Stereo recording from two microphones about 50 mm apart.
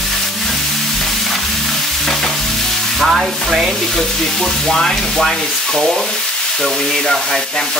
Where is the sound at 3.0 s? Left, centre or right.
Centre.